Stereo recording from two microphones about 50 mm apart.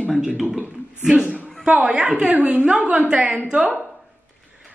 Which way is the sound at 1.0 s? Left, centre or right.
Centre.